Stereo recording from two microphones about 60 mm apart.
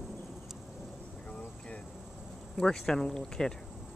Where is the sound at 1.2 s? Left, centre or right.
Centre.